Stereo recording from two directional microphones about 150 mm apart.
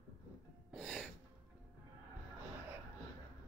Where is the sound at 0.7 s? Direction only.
Centre (ahead or behind).